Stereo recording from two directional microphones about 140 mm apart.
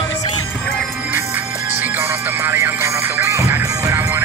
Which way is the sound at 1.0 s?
15° right (ahead or behind).